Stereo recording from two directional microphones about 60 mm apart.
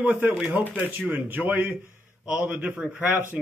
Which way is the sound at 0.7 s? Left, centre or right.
Right.